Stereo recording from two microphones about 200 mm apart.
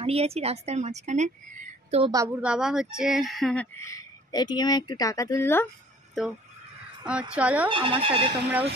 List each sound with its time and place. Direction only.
0.0 s a woman's voice: 30° right (ahead or behind)
2.0 s a woman's voice: 15° right (ahead or behind)
2.4 s speech: 5° right (ahead or behind)
3.7 s speech: 15° left (ahead or behind)
7.1 s speech: 5° right (ahead or behind)
7.6 s speech: 25° right (ahead or behind)